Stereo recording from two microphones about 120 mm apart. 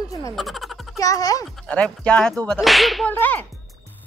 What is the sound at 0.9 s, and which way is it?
Speech, 30° left (ahead or behind).